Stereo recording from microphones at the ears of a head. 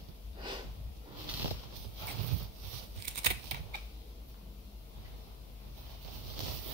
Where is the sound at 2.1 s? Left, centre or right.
Right.